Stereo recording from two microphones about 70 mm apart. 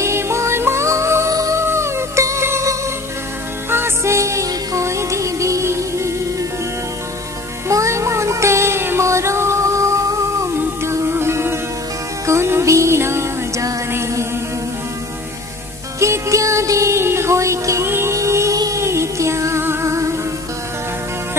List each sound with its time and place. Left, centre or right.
0.0 s music: right
1.3 s music: right
1.6 s music: right
7.6 s music: right
16.0 s music: right